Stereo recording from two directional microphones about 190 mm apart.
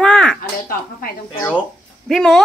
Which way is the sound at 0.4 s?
50° left (ahead or behind).